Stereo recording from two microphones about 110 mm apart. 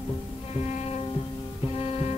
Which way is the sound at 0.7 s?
85° left.